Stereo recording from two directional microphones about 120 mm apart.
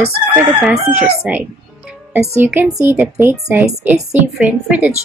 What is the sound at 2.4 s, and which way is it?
Speech, 15° right (ahead or behind).